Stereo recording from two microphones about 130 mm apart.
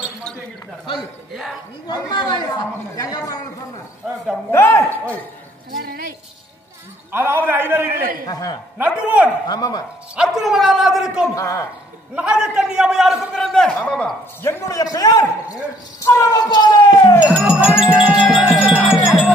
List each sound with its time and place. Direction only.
1.9 s speech: 35° left (ahead or behind)
4.5 s speech: 20° left (ahead or behind)
5.7 s a woman's voice: 90° right
7.1 s a man's voice: 15° right (ahead or behind)
8.3 s speech: 30° left (ahead or behind)
8.7 s a man's voice: 10° right (ahead or behind)
9.5 s speech: 30° left (ahead or behind)
10.1 s a man's voice: 5° right (ahead or behind)
11.3 s speech: 25° left (ahead or behind)
12.2 s a man's voice: 5° right (ahead or behind)
14.5 s speech: 25° left (ahead or behind)
17.3 s a man's voice: 5° right (ahead or behind)
17.7 s wind chime: 10° right (ahead or behind)